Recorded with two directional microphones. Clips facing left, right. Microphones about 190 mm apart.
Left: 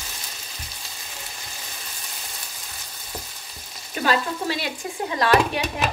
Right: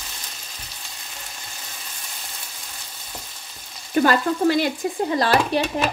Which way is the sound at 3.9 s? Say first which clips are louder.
Right 5 dB; 45° right (ahead or behind).